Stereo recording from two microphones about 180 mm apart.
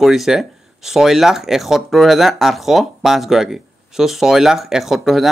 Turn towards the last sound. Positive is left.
turn(degrees=0)  # may be behind; listen again after turning